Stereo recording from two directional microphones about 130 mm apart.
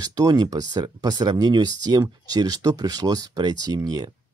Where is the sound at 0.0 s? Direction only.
30° right (ahead or behind).